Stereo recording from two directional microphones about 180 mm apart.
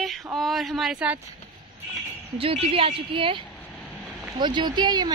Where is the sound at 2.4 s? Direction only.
30° right (ahead or behind).